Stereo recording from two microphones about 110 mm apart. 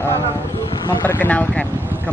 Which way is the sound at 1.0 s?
15° left (ahead or behind).